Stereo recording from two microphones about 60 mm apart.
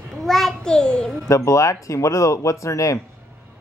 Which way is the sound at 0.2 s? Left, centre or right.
Centre.